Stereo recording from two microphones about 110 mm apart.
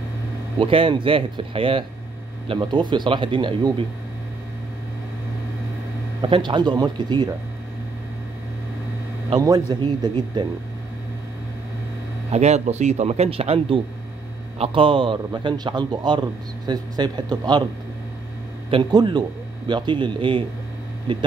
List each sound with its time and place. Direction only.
0.6 s a man's voice: 55° right (ahead or behind)
6.2 s a man's voice: 50° right (ahead or behind)
9.4 s a man's voice: 35° right (ahead or behind)
12.3 s a man's voice: 85° right; by 17.6 s 40° right (ahead or behind)
18.7 s a man's voice: 45° right (ahead or behind)